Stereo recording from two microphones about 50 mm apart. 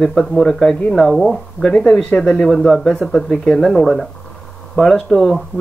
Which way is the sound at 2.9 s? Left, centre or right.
Centre.